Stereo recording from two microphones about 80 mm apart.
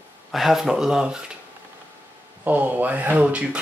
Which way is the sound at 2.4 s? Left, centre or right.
Right.